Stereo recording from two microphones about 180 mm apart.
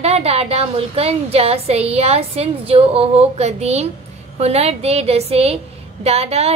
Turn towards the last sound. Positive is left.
turn(degrees=-35)  # may be behind; listen again after turning